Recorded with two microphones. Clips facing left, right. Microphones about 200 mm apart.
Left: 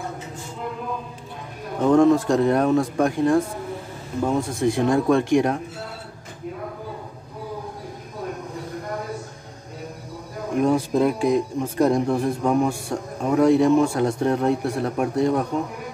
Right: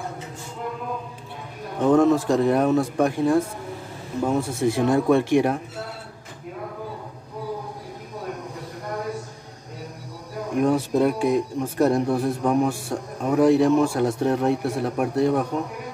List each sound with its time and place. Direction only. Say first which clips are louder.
1.8 s speech: left 1 dB; 5° right (ahead or behind)
10.6 s speech: even; 5° right (ahead or behind)